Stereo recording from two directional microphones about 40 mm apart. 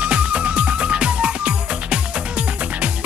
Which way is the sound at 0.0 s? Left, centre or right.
Right.